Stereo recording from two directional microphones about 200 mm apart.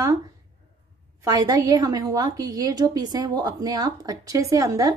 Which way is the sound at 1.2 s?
20° right (ahead or behind).